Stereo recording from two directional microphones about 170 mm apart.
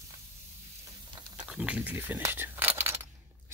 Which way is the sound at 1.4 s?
5° right (ahead or behind).